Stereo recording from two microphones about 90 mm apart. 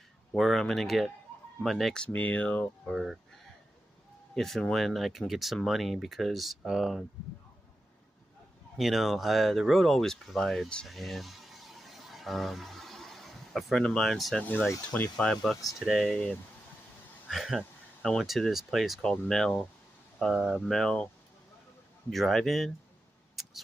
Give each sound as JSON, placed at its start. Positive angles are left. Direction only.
{"t": 0.4, "sound": "speech", "side_deg": 5}
{"t": 2.0, "sound": "speech", "side_deg": 15}
{"t": 2.9, "sound": "speech", "side_deg": 0}
{"t": 4.4, "sound": "speech", "side_deg": 5}
{"t": 8.7, "sound": "speech", "side_deg": 0}
{"t": 15.8, "sound": "speech", "side_deg": 0}
{"t": 17.3, "sound": "speech", "side_deg": -5}
{"t": 22.1, "sound": "speech", "side_deg": 0}